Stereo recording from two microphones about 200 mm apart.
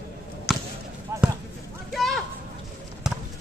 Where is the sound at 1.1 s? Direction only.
15° right (ahead or behind).